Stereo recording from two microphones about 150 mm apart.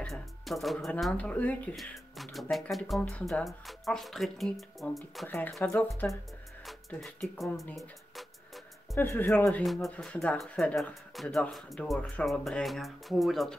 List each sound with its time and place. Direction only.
0.0 s speech: centre (ahead or behind)
8.9 s speech: 15° left (ahead or behind)
9.6 s speech: centre (ahead or behind)